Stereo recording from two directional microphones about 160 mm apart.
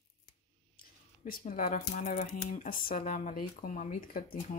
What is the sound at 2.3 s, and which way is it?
Speech, 60° left (ahead or behind).